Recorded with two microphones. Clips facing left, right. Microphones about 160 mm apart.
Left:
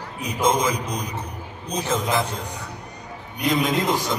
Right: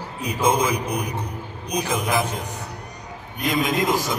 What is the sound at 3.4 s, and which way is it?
Speech, 20° left (ahead or behind).